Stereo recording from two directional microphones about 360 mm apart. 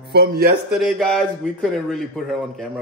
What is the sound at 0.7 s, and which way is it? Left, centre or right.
Mantra, centre.